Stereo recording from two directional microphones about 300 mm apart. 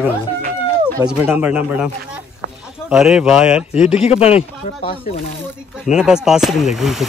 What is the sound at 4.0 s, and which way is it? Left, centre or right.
Speech, left.